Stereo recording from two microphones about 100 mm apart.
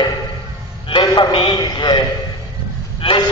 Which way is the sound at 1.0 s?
45° left (ahead or behind).